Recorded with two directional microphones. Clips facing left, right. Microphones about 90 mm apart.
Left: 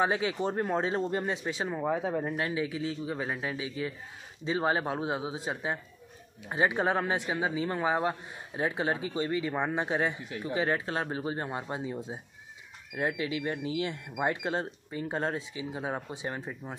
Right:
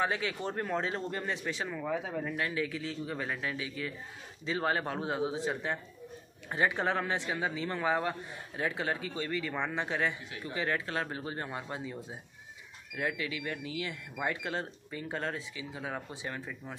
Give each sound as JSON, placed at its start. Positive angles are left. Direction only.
{"t": 0.0, "sound": "a man's voice", "side_deg": 20}